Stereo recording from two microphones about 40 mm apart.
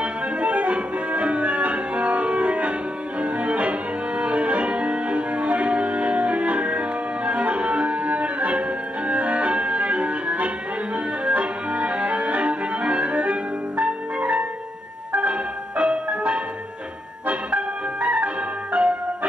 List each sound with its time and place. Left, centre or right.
0.0 s music: right
11.2 s clarinet: right
15.8 s music: right